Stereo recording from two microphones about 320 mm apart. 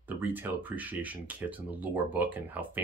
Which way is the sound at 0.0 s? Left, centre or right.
Centre.